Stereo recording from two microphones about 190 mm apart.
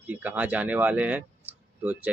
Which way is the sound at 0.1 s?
10° right (ahead or behind).